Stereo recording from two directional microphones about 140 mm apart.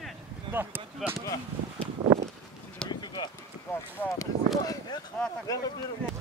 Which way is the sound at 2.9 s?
30° left (ahead or behind).